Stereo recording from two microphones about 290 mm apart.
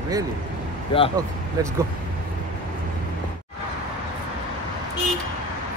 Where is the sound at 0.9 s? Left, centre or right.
Centre.